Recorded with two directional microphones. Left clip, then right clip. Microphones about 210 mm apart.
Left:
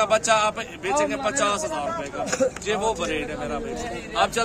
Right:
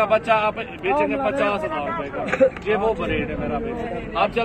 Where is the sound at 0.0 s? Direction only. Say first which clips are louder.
Right 1 dB; 45° left (ahead or behind).